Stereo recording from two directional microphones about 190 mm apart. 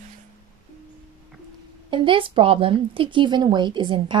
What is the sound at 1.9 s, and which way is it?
Speech, 25° right (ahead or behind).